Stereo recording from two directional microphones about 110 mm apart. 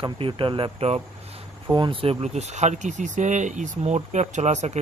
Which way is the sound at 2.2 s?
90° right.